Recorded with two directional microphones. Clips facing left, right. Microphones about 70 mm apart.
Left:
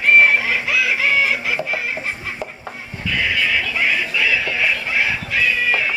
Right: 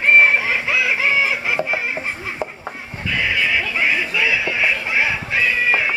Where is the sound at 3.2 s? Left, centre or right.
Centre.